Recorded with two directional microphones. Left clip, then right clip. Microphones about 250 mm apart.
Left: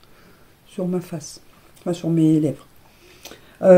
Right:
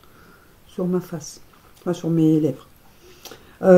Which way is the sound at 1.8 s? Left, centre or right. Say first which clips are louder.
Even; left.